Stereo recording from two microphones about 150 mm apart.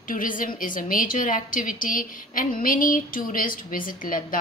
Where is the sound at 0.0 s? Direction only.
65° left (ahead or behind).